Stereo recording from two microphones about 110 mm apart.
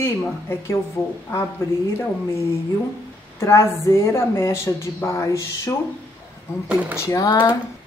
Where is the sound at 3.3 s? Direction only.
25° left (ahead or behind).